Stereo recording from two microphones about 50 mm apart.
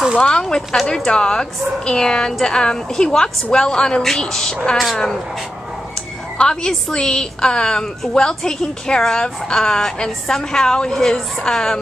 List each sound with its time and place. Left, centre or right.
0.2 s a woman's voice: centre
6.3 s a woman's voice: centre